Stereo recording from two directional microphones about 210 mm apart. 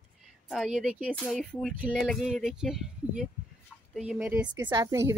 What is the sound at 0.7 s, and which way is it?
Speech, 5° right (ahead or behind).